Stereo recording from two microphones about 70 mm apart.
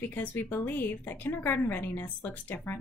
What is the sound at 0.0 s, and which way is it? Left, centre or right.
A woman's voice, left.